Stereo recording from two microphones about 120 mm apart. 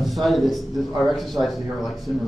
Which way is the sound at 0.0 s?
Centre (ahead or behind).